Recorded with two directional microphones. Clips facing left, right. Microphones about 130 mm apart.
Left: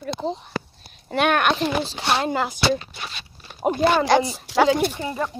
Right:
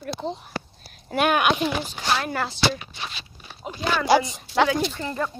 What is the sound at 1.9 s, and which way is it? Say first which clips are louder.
Speech: left 3 dB; 25° left (ahead or behind).